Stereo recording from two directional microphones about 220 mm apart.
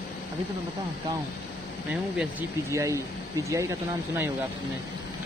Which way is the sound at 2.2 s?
10° right (ahead or behind).